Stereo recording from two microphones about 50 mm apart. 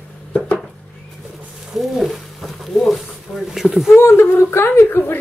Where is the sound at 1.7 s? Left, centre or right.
Centre.